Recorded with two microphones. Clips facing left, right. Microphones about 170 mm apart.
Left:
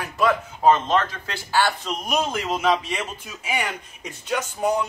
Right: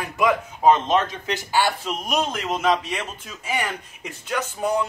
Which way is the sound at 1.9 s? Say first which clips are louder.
Even; centre (ahead or behind).